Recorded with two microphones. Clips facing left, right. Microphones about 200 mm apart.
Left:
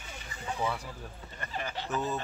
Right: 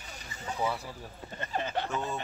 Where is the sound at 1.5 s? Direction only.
50° right (ahead or behind).